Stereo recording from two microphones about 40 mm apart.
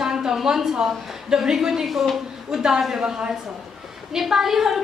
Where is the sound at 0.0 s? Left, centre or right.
Centre.